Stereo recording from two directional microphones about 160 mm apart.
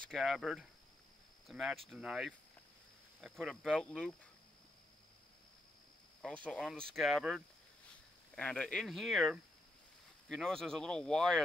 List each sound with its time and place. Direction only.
0.1 s speech: centre (ahead or behind)
6.2 s speech: 5° left (ahead or behind)